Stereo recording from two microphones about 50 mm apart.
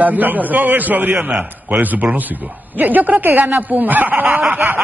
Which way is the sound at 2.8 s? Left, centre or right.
Right.